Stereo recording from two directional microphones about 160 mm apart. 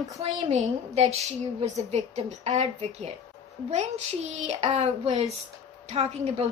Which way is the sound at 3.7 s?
45° right (ahead or behind).